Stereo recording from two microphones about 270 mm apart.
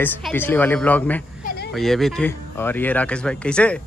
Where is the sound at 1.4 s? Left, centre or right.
Left.